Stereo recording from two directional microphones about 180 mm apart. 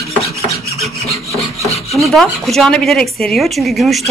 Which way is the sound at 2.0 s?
Centre (ahead or behind).